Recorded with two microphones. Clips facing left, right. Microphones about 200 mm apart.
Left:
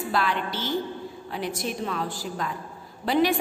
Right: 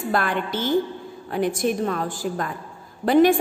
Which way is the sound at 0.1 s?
50° right (ahead or behind).